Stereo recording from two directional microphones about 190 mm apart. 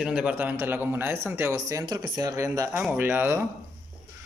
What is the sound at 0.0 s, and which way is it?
A man's voice, 5° right (ahead or behind).